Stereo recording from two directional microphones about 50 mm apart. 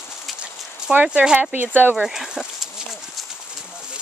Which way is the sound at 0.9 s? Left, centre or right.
Centre.